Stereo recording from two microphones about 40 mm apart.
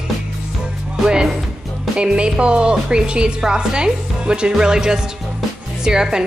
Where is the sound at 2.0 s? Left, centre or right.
Right.